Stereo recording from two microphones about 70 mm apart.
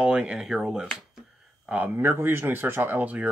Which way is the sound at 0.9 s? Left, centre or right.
Centre.